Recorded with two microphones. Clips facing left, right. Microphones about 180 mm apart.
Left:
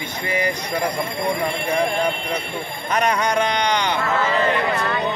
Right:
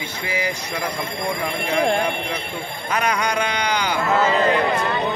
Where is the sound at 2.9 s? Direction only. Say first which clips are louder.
Left 2 dB; 5° right (ahead or behind).